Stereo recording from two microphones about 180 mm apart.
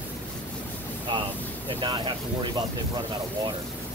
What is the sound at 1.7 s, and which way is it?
Speech, 25° right (ahead or behind).